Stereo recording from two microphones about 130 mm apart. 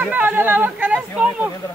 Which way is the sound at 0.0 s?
15° right (ahead or behind).